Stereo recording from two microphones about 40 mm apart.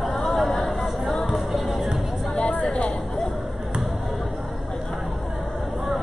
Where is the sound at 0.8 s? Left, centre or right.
Centre.